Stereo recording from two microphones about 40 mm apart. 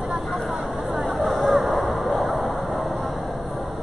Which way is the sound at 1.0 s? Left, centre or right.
Centre.